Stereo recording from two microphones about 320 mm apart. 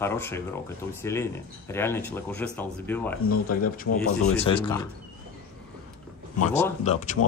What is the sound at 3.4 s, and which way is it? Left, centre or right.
Speech, left.